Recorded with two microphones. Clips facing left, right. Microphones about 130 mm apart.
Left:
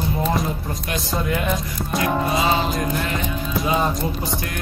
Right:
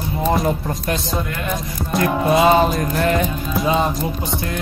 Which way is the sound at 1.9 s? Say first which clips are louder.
Right 3 dB; centre (ahead or behind).